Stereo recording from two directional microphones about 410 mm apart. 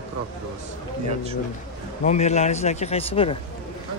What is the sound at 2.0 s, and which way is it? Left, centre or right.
Speech, centre.